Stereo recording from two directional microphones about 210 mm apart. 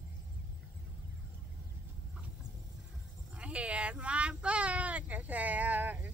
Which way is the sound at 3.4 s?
5° right (ahead or behind).